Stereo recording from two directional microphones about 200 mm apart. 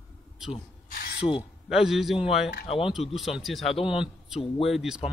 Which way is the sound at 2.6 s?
30° left (ahead or behind).